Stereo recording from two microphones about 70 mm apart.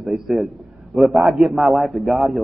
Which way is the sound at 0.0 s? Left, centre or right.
Centre.